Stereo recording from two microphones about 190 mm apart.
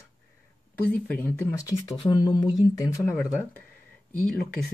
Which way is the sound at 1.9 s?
25° left (ahead or behind).